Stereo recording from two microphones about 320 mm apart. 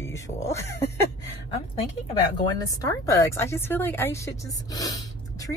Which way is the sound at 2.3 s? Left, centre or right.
Centre.